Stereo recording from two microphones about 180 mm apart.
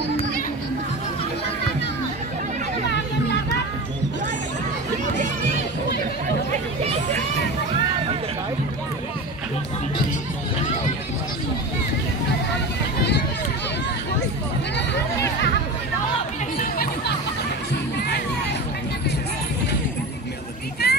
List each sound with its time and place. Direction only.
16.5 s chatter: 55° left (ahead or behind)
20.8 s vehicle: 65° left (ahead or behind)